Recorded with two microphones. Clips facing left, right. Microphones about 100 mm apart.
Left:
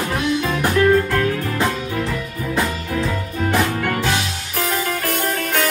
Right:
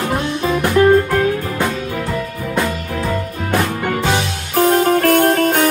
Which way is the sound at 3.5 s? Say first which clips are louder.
Right 3 dB; 15° right (ahead or behind).